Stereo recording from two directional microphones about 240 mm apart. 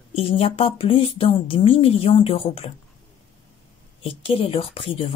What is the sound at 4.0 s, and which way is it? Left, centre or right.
Speech, left.